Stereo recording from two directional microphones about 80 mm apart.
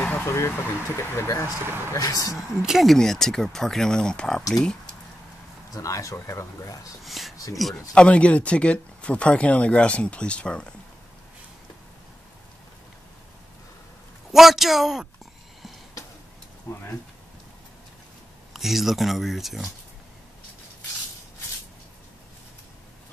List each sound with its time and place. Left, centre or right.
0.0 s vehicle: left
0.3 s speech: left
1.6 s speech: right
2.0 s speech: left
2.3 s speech: centre
5.7 s speech: left
7.1 s speech: centre
7.9 s speech: centre
14.3 s speech: centre
16.7 s speech: left
18.5 s speech: centre